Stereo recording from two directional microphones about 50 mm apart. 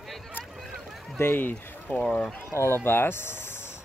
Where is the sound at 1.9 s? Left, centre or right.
Left.